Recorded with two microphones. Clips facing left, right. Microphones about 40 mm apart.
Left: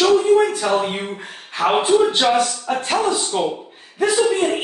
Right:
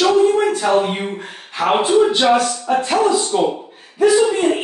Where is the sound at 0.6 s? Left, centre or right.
Centre.